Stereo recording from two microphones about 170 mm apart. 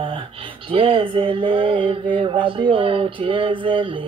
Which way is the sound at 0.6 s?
30° right (ahead or behind).